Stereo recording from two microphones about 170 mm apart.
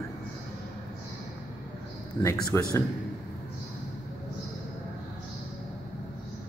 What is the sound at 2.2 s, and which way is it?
Speech, 15° left (ahead or behind).